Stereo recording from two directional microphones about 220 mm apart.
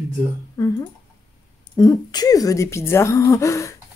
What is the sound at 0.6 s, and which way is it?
Speech, 15° left (ahead or behind).